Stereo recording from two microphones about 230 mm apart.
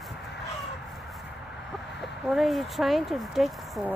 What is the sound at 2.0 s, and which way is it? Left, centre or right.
Speech, centre.